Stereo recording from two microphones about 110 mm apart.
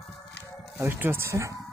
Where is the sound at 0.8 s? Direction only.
20° right (ahead or behind).